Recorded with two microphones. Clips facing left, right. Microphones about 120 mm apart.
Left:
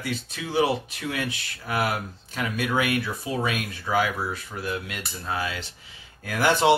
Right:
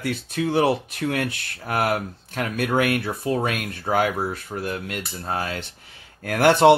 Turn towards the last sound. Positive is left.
turn(degrees=-60)  # may be behind; listen again after turning